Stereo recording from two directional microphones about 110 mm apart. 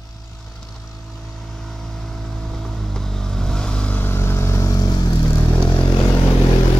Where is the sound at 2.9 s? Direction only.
5° left (ahead or behind); by 5.2 s 40° left (ahead or behind).